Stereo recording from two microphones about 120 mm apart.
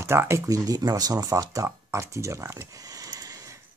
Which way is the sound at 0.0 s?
20° right (ahead or behind).